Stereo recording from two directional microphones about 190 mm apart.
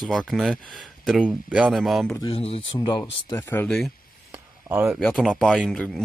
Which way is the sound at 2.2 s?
25° left (ahead or behind).